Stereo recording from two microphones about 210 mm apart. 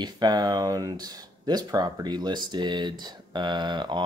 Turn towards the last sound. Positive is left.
turn(degrees=-20)  # may be behind; listen again after turning